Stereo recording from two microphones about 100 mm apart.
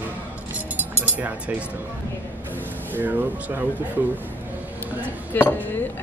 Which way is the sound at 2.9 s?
20° right (ahead or behind).